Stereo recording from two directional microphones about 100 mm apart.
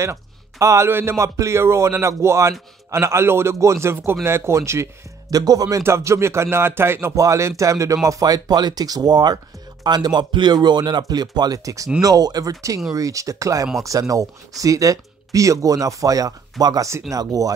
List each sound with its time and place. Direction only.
0.0 s a man's voice: 30° right (ahead or behind)
5.3 s a man's voice: 40° right (ahead or behind)